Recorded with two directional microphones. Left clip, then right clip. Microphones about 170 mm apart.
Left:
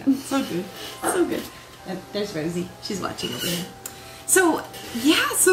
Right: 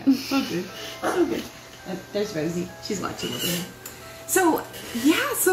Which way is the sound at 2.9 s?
Centre (ahead or behind).